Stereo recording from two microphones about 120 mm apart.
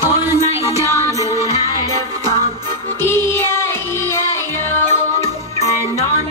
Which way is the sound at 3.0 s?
20° left (ahead or behind).